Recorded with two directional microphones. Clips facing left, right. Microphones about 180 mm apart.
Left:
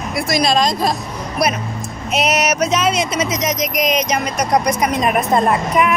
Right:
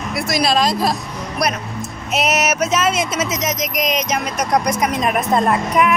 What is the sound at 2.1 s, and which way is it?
Speech, 5° right (ahead or behind).